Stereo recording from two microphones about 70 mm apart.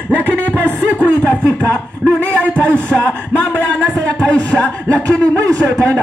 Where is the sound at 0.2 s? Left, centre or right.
Right.